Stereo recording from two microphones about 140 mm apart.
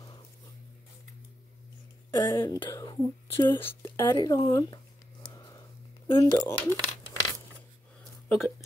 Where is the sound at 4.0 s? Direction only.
25° left (ahead or behind).